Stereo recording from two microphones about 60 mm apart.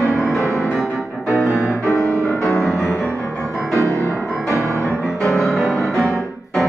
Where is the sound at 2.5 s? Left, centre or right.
Centre.